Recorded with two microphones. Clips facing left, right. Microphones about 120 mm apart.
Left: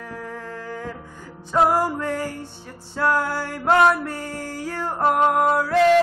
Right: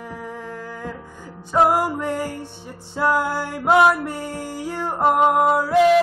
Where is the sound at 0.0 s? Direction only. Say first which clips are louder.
Right 1 dB; 15° right (ahead or behind).